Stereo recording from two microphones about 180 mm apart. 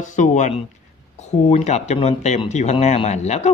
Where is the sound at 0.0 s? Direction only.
45° left (ahead or behind).